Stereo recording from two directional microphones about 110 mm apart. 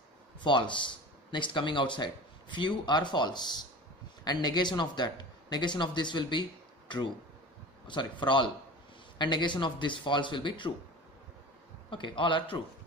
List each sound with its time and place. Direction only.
0.4 s speech: 45° left (ahead or behind)
7.8 s speech: 45° left (ahead or behind)
11.9 s speech: 50° left (ahead or behind)